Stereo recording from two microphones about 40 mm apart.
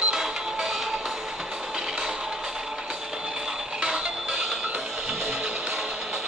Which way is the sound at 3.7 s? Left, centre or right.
Centre.